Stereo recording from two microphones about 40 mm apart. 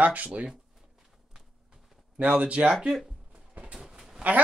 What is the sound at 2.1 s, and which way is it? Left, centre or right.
Speech, right.